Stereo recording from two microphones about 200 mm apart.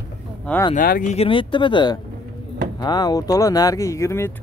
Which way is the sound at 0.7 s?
45° left (ahead or behind).